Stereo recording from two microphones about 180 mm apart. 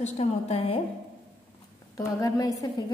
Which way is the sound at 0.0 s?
35° left (ahead or behind).